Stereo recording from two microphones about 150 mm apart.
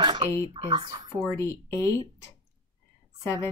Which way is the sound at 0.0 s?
30° right (ahead or behind).